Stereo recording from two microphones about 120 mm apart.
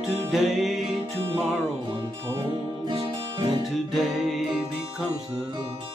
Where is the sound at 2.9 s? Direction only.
50° right (ahead or behind).